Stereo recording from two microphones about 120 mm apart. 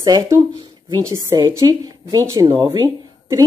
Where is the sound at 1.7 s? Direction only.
25° right (ahead or behind).